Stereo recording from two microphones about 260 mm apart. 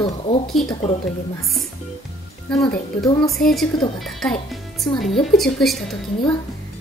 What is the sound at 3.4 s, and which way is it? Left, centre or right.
A woman's voice, centre.